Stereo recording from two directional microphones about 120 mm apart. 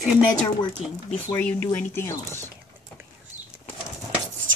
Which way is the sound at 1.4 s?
10° left (ahead or behind).